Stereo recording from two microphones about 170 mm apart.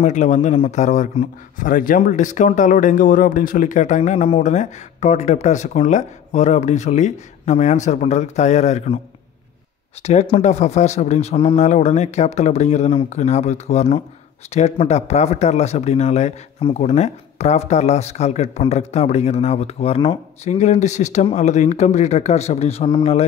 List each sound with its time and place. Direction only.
0.0 s speech: 45° left (ahead or behind)
10.0 s speech: 35° left (ahead or behind)